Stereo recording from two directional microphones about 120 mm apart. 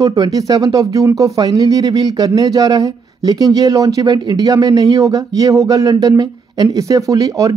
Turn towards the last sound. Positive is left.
turn(degrees=-30)  # may be behind; listen again after turning